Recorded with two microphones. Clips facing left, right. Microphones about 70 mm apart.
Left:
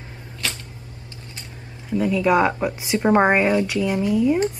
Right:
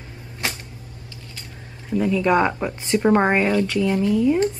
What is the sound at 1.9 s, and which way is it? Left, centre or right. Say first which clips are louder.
Speech: even; centre.